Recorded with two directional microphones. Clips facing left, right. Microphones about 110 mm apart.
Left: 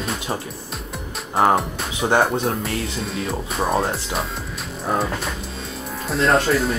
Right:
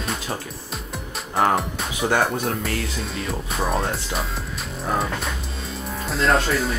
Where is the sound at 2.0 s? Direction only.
25° left (ahead or behind).